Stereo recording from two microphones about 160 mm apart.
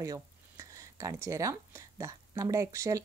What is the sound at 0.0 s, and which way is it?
Speech, 20° right (ahead or behind).